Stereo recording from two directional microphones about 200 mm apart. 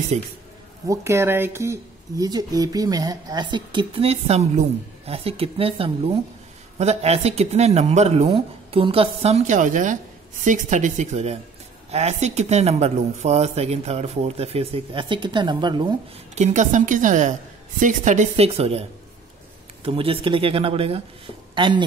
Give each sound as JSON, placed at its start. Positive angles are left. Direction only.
{"t": 0.1, "sound": "speech", "side_deg": -35}
{"t": 0.8, "sound": "speech", "side_deg": -15}
{"t": 16.3, "sound": "speech", "side_deg": -40}